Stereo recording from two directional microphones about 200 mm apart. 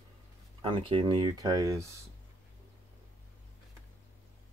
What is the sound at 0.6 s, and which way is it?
Speech, 25° right (ahead or behind).